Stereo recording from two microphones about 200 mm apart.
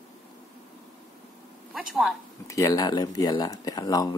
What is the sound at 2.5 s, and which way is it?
Speech, 15° left (ahead or behind).